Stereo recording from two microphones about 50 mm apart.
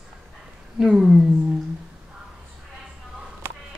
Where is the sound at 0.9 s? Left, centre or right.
Centre.